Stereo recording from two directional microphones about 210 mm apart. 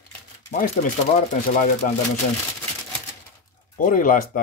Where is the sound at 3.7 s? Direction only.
40° left (ahead or behind).